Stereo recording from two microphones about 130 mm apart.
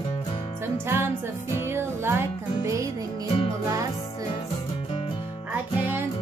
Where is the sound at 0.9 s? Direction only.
20° right (ahead or behind).